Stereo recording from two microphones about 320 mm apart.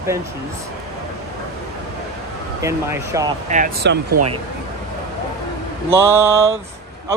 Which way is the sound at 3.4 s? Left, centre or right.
Right.